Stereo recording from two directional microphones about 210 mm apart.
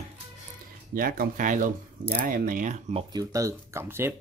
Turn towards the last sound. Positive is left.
turn(degrees=-10)  # may be behind; listen again after turning